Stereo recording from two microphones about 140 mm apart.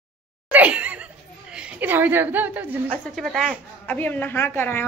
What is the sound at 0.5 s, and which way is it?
Laughter, 10° right (ahead or behind).